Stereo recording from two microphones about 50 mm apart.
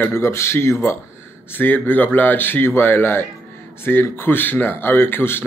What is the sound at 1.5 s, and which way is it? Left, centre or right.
Speech, left.